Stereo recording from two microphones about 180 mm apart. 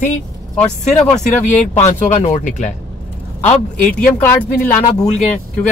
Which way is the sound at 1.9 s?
40° left (ahead or behind).